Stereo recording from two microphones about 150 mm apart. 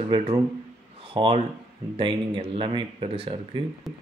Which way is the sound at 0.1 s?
35° right (ahead or behind).